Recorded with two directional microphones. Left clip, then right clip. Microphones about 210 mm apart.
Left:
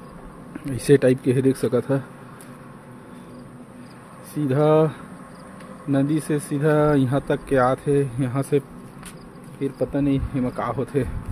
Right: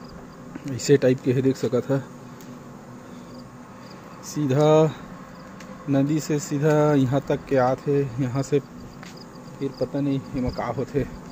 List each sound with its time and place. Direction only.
0.7 s speech: 20° left (ahead or behind)
4.4 s speech: 5° left (ahead or behind)